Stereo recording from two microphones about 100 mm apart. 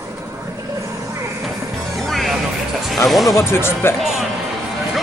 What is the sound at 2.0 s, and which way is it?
Music, centre (ahead or behind).